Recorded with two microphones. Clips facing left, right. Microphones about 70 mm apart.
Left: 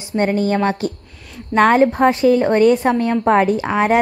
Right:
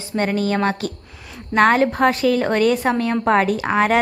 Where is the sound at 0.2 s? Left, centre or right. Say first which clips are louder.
Left 3 dB; left.